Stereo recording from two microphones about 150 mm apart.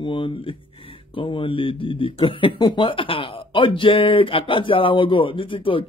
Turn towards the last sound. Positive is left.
turn(degrees=35)  # may be behind; listen again after turning